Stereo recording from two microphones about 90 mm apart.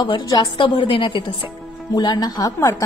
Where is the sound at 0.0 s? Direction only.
50° left (ahead or behind).